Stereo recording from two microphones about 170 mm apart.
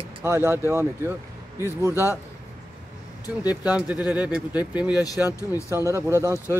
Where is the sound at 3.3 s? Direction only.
5° right (ahead or behind).